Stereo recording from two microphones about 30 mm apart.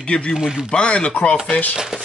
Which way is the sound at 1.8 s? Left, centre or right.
Right.